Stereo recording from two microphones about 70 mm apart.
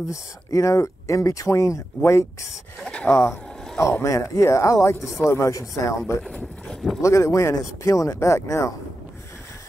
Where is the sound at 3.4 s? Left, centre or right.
Centre.